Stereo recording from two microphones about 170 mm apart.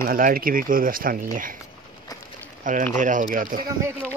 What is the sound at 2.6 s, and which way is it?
Speech, 50° right (ahead or behind).